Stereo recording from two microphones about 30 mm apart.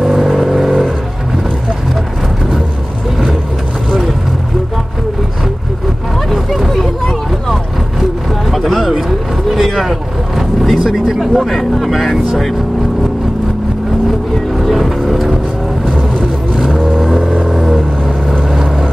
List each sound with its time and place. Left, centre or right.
0.1 s vehicle: centre
6.3 s a sound: centre
6.7 s a sound: centre
8.5 s a sound: centre
9.5 s vehicle: centre
11.3 s speech: centre
11.7 s vehicle: centre
14.7 s music: centre
16.5 s vehicle: centre